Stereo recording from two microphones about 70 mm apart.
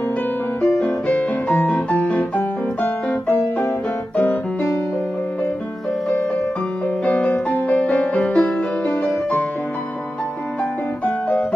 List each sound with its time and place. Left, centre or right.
0.7 s music: centre
2.8 s piano: left
7.1 s music: left